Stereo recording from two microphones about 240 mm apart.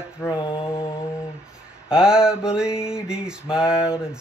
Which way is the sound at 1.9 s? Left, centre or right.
Centre.